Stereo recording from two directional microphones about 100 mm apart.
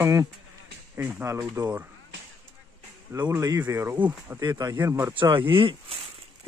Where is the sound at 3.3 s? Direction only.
35° right (ahead or behind); by 4.4 s 20° right (ahead or behind).